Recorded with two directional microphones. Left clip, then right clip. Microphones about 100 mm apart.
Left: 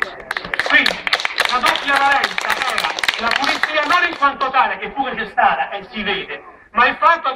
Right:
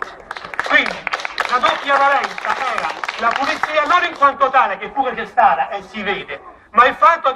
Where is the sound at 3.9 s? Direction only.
35° right (ahead or behind).